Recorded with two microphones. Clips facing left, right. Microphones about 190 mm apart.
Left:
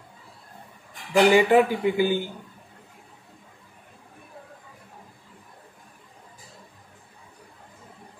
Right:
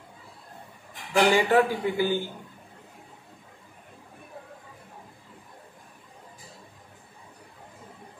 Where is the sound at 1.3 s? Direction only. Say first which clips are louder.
Left 4 dB; 15° left (ahead or behind).